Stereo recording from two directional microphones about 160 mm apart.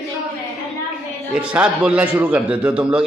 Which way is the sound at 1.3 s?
5° right (ahead or behind).